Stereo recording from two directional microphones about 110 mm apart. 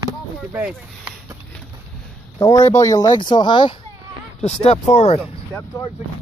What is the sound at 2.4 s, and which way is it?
Speech, 35° left (ahead or behind).